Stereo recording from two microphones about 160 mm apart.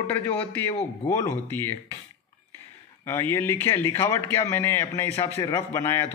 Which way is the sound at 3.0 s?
15° left (ahead or behind).